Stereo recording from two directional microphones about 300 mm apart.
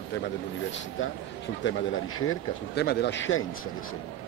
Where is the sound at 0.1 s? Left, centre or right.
Left.